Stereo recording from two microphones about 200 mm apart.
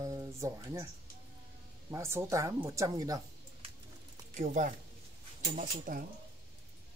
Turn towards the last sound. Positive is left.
turn(degrees=-40)  # may be behind; listen again after turning